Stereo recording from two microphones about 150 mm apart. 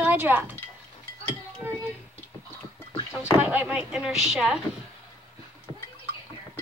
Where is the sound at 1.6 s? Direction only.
15° right (ahead or behind).